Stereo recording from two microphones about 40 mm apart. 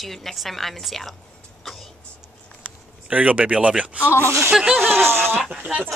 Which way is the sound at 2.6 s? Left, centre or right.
Right.